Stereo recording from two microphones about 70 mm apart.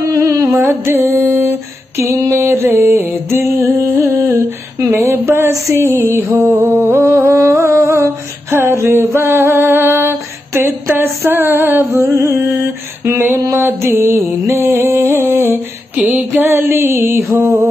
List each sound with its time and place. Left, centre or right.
0.1 s music: right
0.7 s mantra: right
4.9 s a sound: right
6.4 s humming: right
11.9 s music: right
13.0 s a sound: right
14.4 s music: right
14.7 s music: right
16.0 s a sound: right